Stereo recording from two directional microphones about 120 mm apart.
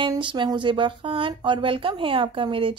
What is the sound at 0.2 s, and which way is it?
Speech, 40° right (ahead or behind).